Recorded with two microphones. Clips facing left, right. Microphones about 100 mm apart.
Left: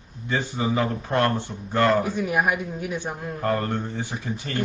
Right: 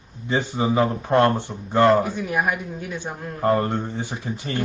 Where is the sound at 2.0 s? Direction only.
Centre (ahead or behind).